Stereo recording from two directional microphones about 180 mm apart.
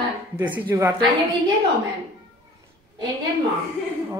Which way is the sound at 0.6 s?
15° right (ahead or behind).